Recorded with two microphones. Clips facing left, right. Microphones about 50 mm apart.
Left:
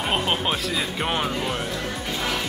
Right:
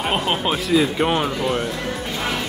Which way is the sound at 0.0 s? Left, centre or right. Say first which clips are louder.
Right 3 dB; centre.